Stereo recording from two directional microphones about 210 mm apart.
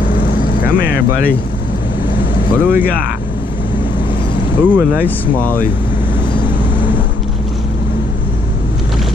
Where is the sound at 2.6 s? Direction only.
10° right (ahead or behind).